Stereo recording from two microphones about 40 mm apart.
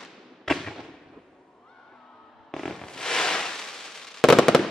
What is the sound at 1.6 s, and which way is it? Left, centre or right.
Fireworks, centre.